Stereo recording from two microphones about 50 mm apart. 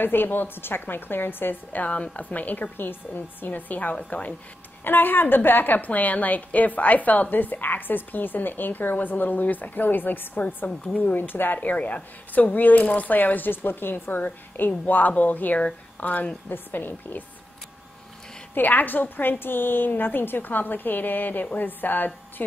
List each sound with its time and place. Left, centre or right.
0.0 s a woman's voice: left
4.8 s a woman's voice: left
16.4 s a woman's voice: left
18.5 s a woman's voice: left